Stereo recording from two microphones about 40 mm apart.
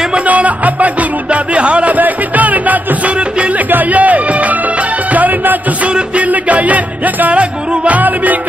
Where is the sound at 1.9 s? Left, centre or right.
Right.